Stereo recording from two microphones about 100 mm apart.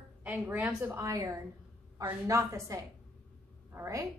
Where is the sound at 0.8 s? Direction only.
30° right (ahead or behind).